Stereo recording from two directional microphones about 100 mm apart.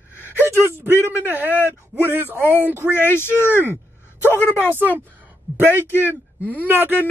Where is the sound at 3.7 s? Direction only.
25° left (ahead or behind).